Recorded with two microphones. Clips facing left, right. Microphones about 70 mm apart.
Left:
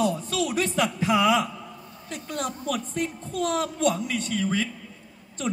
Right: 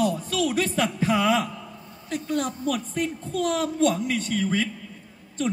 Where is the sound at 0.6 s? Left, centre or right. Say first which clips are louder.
Even; right.